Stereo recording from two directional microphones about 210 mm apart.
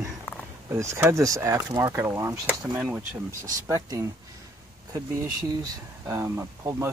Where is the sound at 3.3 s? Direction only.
40° right (ahead or behind).